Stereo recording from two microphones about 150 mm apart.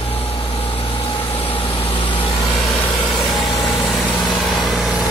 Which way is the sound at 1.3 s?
40° left (ahead or behind).